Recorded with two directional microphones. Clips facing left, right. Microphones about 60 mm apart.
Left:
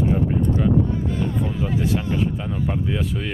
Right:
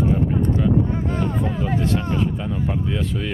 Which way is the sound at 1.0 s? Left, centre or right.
Right.